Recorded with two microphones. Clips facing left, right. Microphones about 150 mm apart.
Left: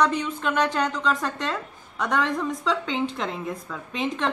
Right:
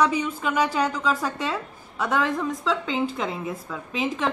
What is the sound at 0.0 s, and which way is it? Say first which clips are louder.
A woman's voice: right 1 dB; 10° right (ahead or behind).